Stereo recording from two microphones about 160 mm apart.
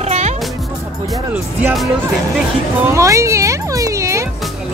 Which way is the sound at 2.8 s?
20° right (ahead or behind).